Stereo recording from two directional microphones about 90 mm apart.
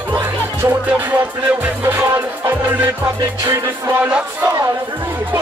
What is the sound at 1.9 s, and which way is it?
Music, 25° right (ahead or behind).